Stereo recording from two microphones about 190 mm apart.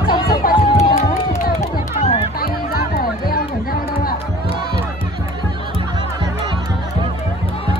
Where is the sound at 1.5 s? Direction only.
35° left (ahead or behind).